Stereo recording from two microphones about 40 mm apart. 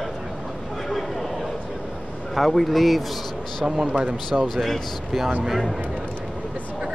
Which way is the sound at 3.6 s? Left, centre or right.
Right.